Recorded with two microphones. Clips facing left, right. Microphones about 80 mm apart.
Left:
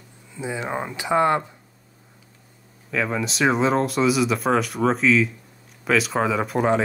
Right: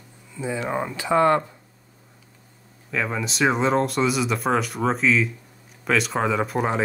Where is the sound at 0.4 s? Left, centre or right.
Centre.